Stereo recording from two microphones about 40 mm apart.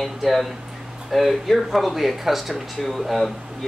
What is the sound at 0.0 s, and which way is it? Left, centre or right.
A man's voice, centre.